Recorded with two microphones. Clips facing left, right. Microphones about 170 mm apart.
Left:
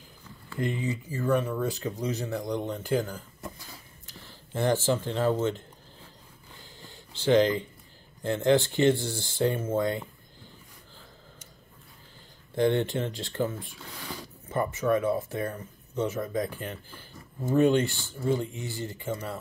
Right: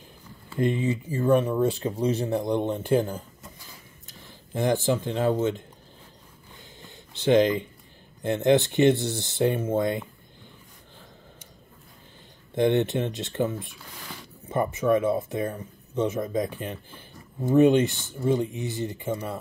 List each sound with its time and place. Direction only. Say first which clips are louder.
0.6 s speech: right 6 dB; 25° right (ahead or behind)
4.6 s speech: right 2 dB; 15° right (ahead or behind)
6.8 s a sound: right 4 dB; 20° right (ahead or behind)
8.2 s speech: right 2 dB; 20° right (ahead or behind)
12.5 s speech: right 3 dB; 20° right (ahead or behind)